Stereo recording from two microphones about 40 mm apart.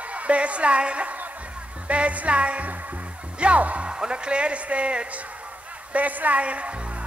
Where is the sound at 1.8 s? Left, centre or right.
Right.